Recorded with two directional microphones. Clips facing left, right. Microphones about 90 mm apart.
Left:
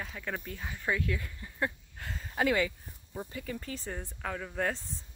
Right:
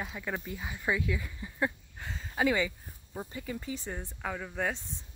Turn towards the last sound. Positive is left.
turn(degrees=0)  # may be behind; listen again after turning